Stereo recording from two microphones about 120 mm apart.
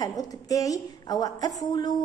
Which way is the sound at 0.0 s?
30° left (ahead or behind).